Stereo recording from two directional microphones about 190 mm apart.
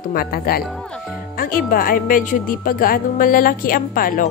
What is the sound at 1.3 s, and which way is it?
A woman's voice, 50° left (ahead or behind).